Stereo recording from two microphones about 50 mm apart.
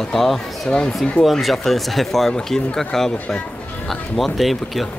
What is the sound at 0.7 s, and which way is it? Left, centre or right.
Speech, centre.